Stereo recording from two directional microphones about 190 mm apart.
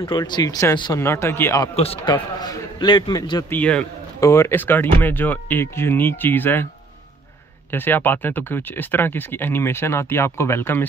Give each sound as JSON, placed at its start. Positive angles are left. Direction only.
{"t": 0.0, "sound": "speech", "side_deg": 25}
{"t": 1.8, "sound": "a man's voice", "side_deg": 30}
{"t": 3.5, "sound": "speech", "side_deg": 5}
{"t": 7.7, "sound": "speech", "side_deg": 10}